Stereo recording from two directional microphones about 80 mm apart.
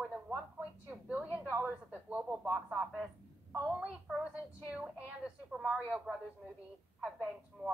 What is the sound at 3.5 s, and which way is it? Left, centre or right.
Speech, centre.